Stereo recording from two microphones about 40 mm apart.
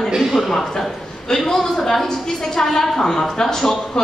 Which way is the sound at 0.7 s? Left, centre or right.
Centre.